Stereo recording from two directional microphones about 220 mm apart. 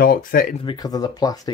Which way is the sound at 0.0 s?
40° left (ahead or behind).